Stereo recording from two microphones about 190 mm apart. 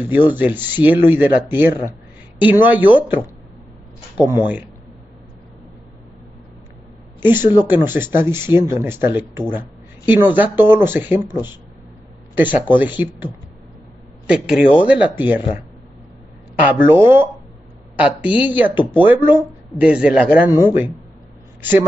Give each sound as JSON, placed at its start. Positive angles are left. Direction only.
{"t": 0.3, "sound": "speech", "side_deg": -10}
{"t": 7.2, "sound": "speech", "side_deg": -10}
{"t": 12.4, "sound": "speech", "side_deg": -10}
{"t": 16.6, "sound": "speech", "side_deg": -10}